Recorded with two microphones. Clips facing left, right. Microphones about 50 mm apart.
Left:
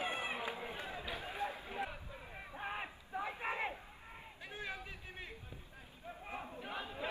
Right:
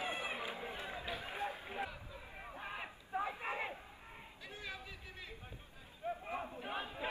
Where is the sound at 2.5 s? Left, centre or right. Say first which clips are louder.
Left 4 dB; centre.